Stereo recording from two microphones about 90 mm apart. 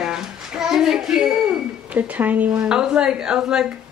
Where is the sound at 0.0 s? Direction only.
5° right (ahead or behind).